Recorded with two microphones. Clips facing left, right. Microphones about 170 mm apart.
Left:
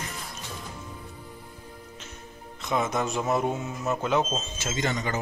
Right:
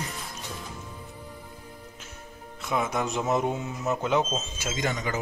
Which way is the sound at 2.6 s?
10° right (ahead or behind).